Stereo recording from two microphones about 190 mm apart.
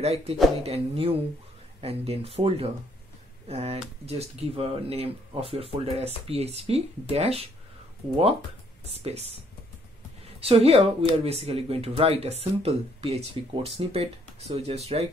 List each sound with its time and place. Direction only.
0.0 s speech: 35° right (ahead or behind)
8.9 s speech: 35° right (ahead or behind)
10.4 s speech: 35° right (ahead or behind)